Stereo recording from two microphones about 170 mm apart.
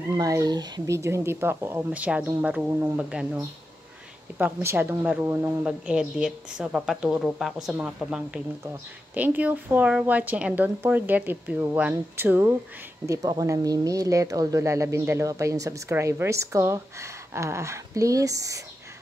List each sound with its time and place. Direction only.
0.2 s a woman's voice: 20° right (ahead or behind); by 3.3 s 5° right (ahead or behind)
4.4 s a woman's voice: 15° right (ahead or behind)